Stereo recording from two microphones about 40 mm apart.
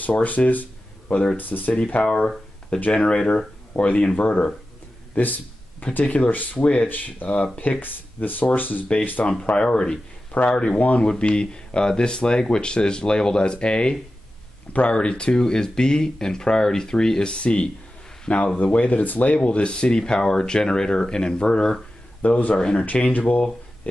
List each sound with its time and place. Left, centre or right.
0.2 s a sound: left
1.3 s speech: left
2.0 s speech: centre
3.7 s speech: left
5.2 s speech: left
6.9 s speech: left
8.5 s speech: left
9.5 s speech: left
18.6 s speech: left; by 21.7 s centre
22.2 s speech: left
23.1 s speech: left